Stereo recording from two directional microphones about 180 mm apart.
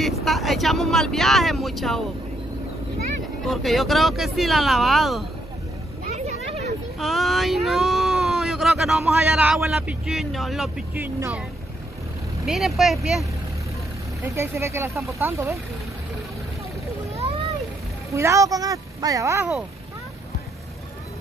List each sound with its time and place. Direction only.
0.0 s speech: centre (ahead or behind)
3.4 s speech: centre (ahead or behind)
6.1 s a sound: 40° right (ahead or behind)
7.0 s speech: centre (ahead or behind)
11.0 s speech: 15° right (ahead or behind)
12.4 s speech: centre (ahead or behind)
14.2 s speech: 15° right (ahead or behind)
18.1 s speech: 15° right (ahead or behind)